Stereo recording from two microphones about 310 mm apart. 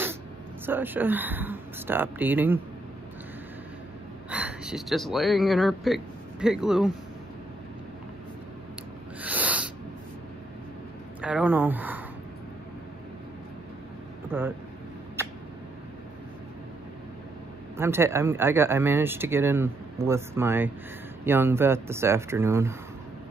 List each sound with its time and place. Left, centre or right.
0.7 s speech: centre
4.3 s speech: centre
9.2 s a sound: centre
11.1 s speech: centre
14.3 s speech: centre
17.7 s speech: centre